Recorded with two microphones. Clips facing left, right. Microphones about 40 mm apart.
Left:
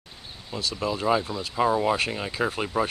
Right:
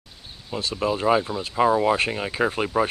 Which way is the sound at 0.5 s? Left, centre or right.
Centre.